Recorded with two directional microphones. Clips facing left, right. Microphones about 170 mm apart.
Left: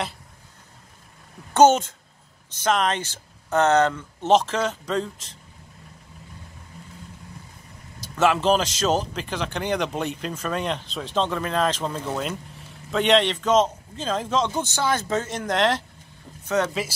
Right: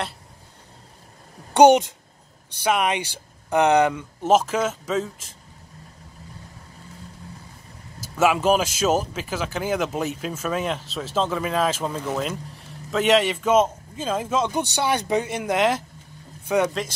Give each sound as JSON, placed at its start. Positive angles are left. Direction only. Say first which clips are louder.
{"t": 1.5, "sound": "a woman's voice", "louder": "right 2 dB", "side_deg": -15}
{"t": 8.0, "sound": "a man's voice", "louder": "right 1 dB", "side_deg": -10}